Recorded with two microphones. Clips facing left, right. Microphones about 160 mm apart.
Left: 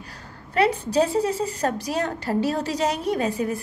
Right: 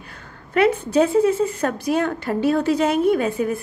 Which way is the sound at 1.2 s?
35° left (ahead or behind).